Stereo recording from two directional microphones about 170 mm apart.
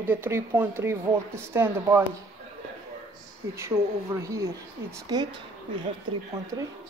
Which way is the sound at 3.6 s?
15° right (ahead or behind).